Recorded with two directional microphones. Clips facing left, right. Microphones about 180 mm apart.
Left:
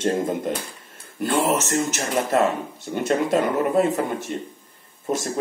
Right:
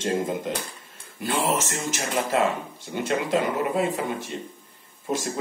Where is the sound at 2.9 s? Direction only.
45° left (ahead or behind).